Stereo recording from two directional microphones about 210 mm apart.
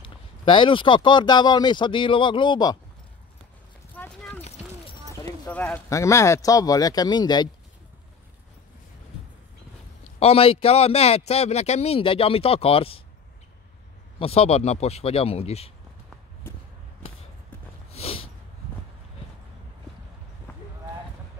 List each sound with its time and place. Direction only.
0.0 s a man's voice: 25° left (ahead or behind)
3.9 s clip-clop: 5° left (ahead or behind)
5.5 s speech: 10° left (ahead or behind)
10.1 s a man's voice: 30° left (ahead or behind)
14.2 s a man's voice: 30° left (ahead or behind)
17.9 s a sound: 30° left (ahead or behind)